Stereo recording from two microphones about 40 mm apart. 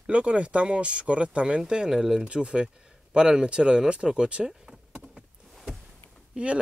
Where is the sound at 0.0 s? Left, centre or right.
Right; by 2.2 s centre.